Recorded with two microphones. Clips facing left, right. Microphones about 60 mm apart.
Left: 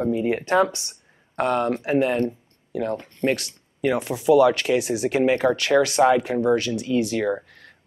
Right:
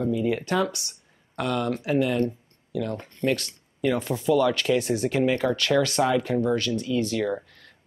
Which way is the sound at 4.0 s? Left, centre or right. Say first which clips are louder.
Left 7 dB; centre.